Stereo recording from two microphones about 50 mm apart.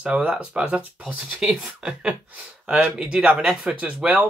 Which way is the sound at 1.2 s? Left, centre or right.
Centre.